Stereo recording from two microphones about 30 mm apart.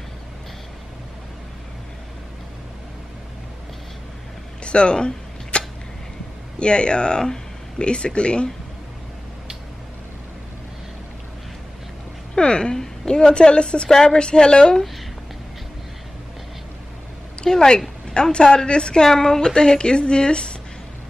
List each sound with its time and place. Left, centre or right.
4.6 s a sound: left
6.6 s speech: left
12.4 s a woman's voice: left
17.5 s a woman's voice: centre
18.1 s a woman's voice: left
19.0 s a woman's voice: centre